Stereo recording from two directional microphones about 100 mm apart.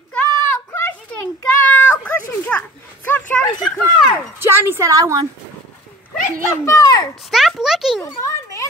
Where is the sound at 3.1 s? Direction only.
20° left (ahead or behind).